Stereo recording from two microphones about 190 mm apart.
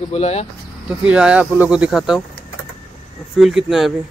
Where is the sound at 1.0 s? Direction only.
5° right (ahead or behind).